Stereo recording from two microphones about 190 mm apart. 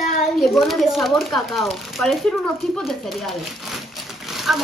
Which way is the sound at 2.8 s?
Centre (ahead or behind).